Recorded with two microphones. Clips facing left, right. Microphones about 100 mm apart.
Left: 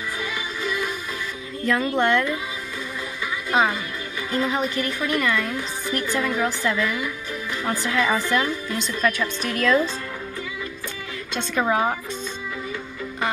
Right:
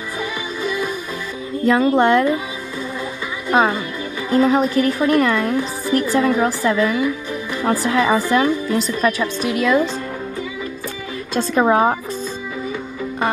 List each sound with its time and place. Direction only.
0.2 s music: 25° right (ahead or behind)
1.7 s a woman's voice: 25° right (ahead or behind)
3.5 s a woman's voice: 35° right (ahead or behind)
9.4 s a woman's voice: 15° right (ahead or behind)
11.3 s a woman's voice: 35° right (ahead or behind)